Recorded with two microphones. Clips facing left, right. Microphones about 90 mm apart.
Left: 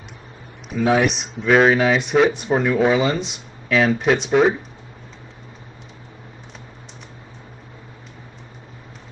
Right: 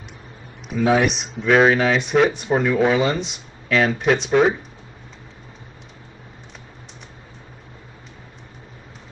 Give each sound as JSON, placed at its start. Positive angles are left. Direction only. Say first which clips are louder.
{"t": 0.7, "sound": "speech", "louder": "even", "side_deg": 0}